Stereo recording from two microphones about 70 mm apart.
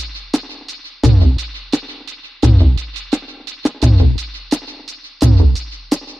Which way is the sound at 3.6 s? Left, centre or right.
Centre.